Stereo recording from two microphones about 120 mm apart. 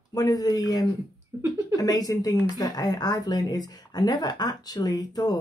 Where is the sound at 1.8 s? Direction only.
30° left (ahead or behind).